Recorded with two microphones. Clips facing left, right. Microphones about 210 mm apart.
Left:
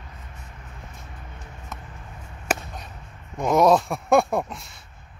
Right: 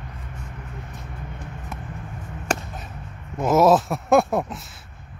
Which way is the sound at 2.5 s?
5° left (ahead or behind).